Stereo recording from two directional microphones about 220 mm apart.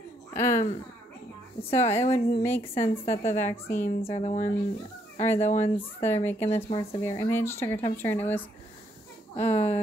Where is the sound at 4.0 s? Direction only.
25° left (ahead or behind).